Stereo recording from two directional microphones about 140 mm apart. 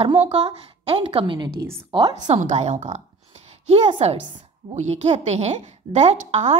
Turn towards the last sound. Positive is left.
turn(degrees=-50)  # may be behind; listen again after turning